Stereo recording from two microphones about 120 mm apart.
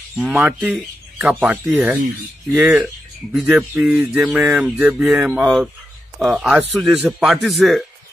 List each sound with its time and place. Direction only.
0.2 s a man's voice: 10° right (ahead or behind)
2.6 s speech: 5° right (ahead or behind)